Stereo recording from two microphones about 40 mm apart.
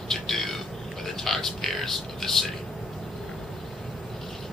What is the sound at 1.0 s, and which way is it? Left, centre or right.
A man's voice, centre.